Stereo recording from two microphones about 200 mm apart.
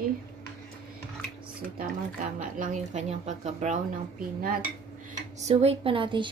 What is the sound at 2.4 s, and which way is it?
A woman's voice, 40° right (ahead or behind).